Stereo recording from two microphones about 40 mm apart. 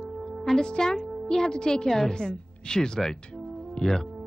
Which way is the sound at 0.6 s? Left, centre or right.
Centre.